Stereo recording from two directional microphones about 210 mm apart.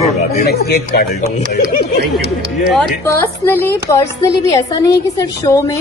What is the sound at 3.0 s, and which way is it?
A man's voice, 10° left (ahead or behind).